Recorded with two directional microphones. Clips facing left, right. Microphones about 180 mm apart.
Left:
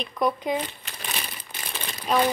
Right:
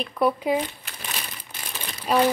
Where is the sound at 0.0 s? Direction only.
5° right (ahead or behind).